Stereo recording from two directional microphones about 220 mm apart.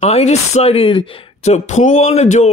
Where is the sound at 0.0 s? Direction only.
30° left (ahead or behind).